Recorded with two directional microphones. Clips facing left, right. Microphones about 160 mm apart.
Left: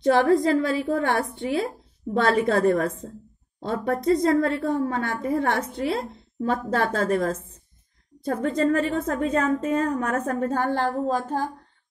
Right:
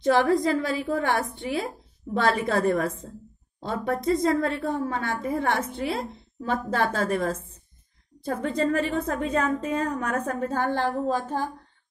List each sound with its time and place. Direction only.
0.4 s a woman's voice: 35° left (ahead or behind)
8.3 s a woman's voice: 40° left (ahead or behind)